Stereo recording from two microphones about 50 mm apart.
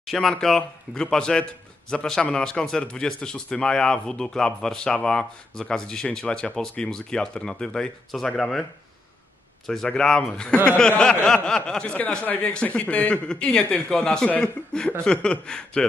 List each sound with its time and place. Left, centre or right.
0.0 s speech: centre
9.9 s speech: centre